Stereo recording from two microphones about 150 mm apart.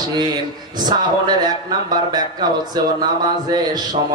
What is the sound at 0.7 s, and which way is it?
Speech, 30° right (ahead or behind).